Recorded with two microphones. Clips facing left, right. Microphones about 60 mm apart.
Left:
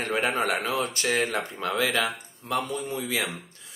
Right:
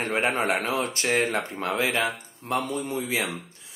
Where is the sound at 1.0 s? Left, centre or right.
Right.